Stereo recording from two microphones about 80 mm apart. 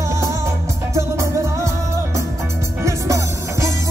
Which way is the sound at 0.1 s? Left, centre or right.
Right.